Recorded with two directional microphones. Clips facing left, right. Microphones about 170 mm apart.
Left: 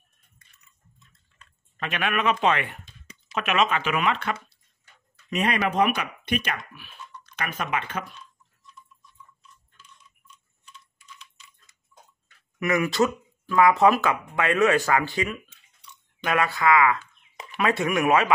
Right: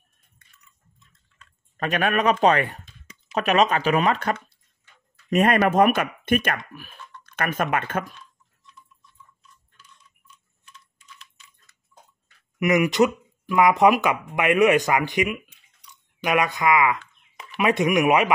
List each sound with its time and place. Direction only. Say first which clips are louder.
1.8 s speech: right 5 dB; 40° right (ahead or behind)
12.5 s speech: right 4 dB; 15° right (ahead or behind)